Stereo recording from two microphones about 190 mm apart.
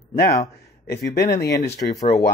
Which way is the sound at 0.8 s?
55° left (ahead or behind).